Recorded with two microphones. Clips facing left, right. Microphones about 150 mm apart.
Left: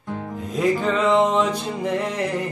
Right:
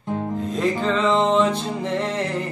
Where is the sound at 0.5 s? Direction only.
5° left (ahead or behind).